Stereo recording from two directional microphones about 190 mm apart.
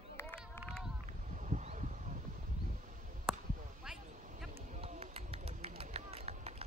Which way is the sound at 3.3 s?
5° right (ahead or behind).